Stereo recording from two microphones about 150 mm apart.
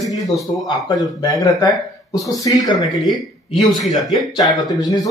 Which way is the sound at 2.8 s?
Centre (ahead or behind).